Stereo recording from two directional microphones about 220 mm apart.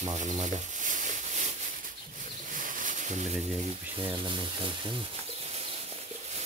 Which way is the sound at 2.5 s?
35° right (ahead or behind).